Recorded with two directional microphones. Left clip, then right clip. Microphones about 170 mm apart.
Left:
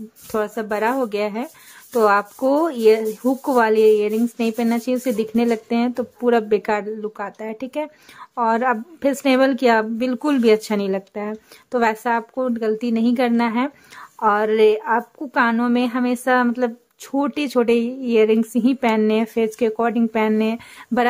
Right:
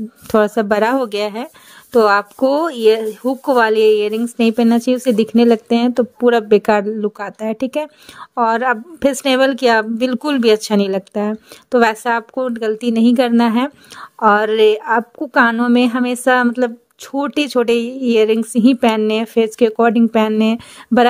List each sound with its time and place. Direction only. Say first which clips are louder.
0.3 s speech: right 9 dB; 40° right (ahead or behind)